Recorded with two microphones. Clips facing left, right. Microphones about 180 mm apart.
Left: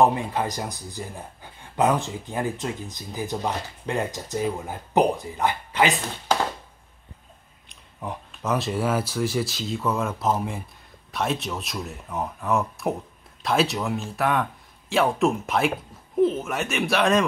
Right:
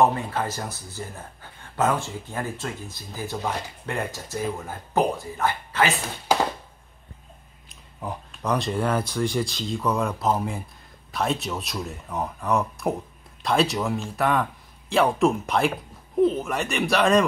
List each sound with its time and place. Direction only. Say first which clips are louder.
0.0 s a man's voice: left 1 dB; 15° left (ahead or behind)
8.0 s speech: even; centre (ahead or behind)